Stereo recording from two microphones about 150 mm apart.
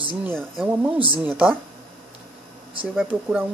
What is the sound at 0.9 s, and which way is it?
Speech, 35° right (ahead or behind).